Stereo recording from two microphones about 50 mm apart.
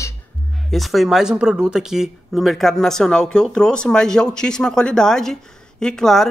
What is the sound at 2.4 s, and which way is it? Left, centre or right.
Speech, centre.